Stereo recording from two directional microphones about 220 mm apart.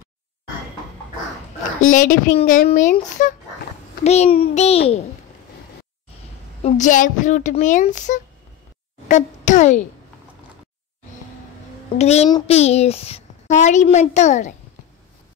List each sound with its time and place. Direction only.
1.8 s a woman's voice: 35° left (ahead or behind)
6.6 s a child's voice: 35° left (ahead or behind)
12.0 s a woman's voice: 30° left (ahead or behind)